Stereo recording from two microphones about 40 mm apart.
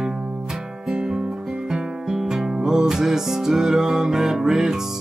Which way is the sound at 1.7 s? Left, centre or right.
Centre.